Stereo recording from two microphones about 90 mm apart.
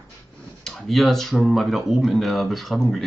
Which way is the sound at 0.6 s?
Centre (ahead or behind).